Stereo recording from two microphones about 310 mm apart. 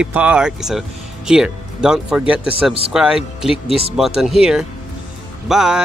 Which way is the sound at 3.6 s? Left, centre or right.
Centre.